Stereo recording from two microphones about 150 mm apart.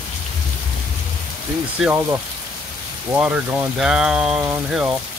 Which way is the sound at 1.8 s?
15° right (ahead or behind).